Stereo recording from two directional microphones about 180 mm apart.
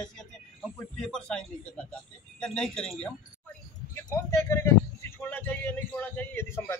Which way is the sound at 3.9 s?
15° left (ahead or behind).